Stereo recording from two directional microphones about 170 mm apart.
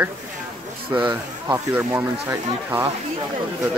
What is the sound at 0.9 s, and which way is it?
Speech, 10° right (ahead or behind).